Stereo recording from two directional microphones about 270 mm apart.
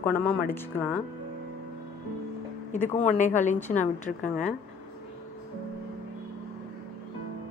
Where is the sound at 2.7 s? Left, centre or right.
Left.